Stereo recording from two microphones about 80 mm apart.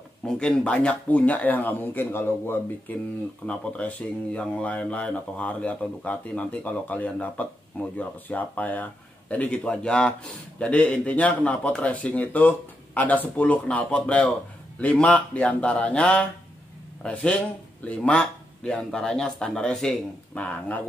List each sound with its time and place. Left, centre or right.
0.2 s speech: centre; by 3.0 s left
3.4 s speech: centre